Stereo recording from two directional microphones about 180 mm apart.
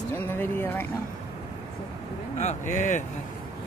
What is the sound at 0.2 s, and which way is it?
Speech, 15° left (ahead or behind).